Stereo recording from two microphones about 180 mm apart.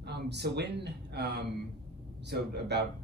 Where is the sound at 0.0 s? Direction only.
70° right (ahead or behind).